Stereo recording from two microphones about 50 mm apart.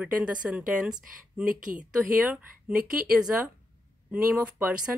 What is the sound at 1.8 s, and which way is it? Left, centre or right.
A woman's voice, right.